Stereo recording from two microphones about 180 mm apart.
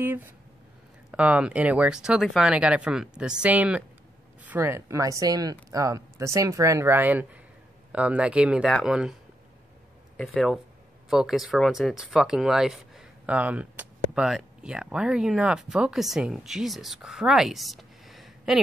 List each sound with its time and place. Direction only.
1.1 s speech: 5° right (ahead or behind)
10.1 s speech: centre (ahead or behind)